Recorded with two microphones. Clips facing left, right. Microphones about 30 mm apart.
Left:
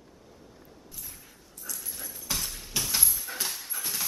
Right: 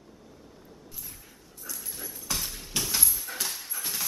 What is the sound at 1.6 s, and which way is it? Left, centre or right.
Dog, centre.